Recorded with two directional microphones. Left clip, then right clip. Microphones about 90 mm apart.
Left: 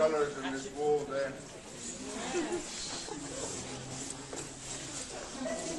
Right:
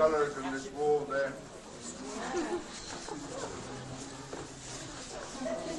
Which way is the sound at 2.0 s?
Centre (ahead or behind).